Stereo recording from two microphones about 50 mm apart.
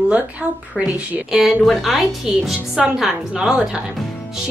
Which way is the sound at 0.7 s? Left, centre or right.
Right.